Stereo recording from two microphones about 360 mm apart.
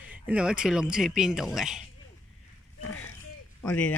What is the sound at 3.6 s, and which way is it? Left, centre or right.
Speech, centre.